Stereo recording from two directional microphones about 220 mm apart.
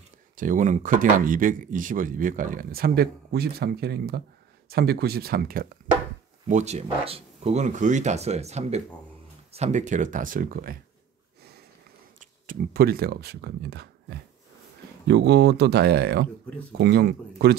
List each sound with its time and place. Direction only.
0.4 s speech: 35° right (ahead or behind)
6.4 s speech: 30° right (ahead or behind)
12.2 s speech: 40° right (ahead or behind)
15.0 s speech: 50° right (ahead or behind)